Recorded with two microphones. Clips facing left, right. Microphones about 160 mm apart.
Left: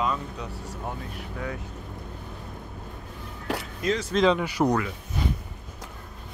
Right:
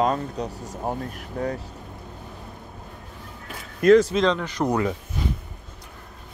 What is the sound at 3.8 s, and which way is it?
Speech, 55° right (ahead or behind).